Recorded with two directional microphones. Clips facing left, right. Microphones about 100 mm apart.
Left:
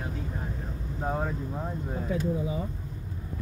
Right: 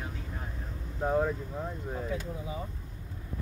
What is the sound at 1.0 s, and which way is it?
Speech, 10° left (ahead or behind).